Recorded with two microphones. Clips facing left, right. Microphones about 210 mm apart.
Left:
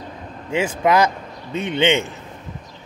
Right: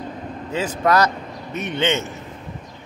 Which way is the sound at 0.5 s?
10° left (ahead or behind).